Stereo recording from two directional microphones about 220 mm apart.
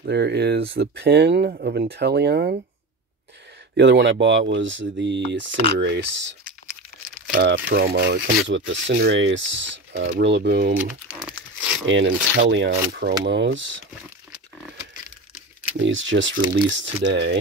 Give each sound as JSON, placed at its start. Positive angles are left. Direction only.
{"t": 0.0, "sound": "speech", "side_deg": -50}
{"t": 3.7, "sound": "speech", "side_deg": -50}
{"t": 7.3, "sound": "speech", "side_deg": -50}
{"t": 11.1, "sound": "crumpling", "side_deg": -5}
{"t": 11.9, "sound": "speech", "side_deg": -55}
{"t": 15.8, "sound": "speech", "side_deg": -60}